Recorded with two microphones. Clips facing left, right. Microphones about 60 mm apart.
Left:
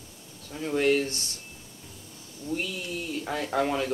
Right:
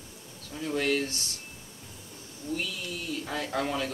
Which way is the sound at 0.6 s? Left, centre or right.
Left.